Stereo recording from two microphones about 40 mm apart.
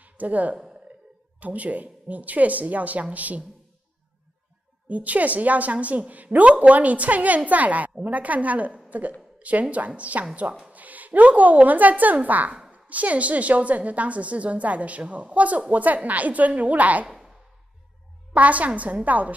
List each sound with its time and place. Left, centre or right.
0.0 s a woman's voice: right
4.8 s a woman's voice: right
17.1 s a sound: centre
18.3 s a woman's voice: right